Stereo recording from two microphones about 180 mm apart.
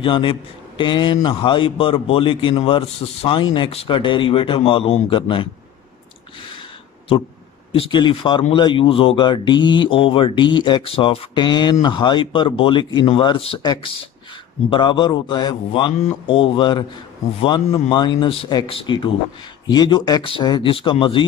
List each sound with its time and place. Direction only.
0.0 s a man's voice: 30° left (ahead or behind)
7.7 s a man's voice: 30° left (ahead or behind)